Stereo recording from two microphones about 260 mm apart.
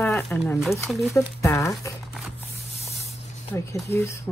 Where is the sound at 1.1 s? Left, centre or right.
Centre.